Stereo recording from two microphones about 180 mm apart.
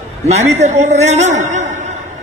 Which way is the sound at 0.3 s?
40° right (ahead or behind).